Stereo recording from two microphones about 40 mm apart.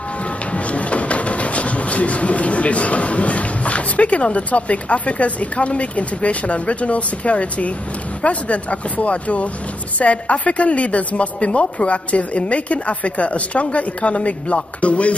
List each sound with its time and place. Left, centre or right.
0.5 s a woman's voice: left